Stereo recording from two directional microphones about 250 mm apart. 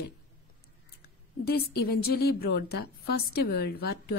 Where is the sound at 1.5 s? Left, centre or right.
Left.